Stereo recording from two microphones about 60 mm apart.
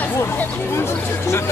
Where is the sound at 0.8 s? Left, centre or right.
Left.